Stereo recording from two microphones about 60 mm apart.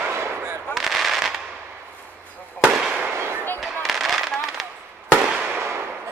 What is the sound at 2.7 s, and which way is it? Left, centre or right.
Fireworks, centre.